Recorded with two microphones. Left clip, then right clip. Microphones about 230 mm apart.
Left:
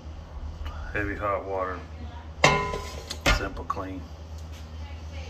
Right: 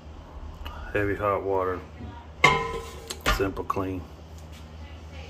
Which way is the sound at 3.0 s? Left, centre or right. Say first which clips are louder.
Even; right.